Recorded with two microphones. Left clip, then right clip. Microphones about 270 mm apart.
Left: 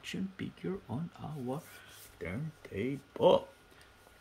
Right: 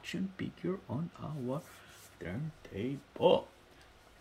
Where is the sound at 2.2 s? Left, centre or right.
Centre.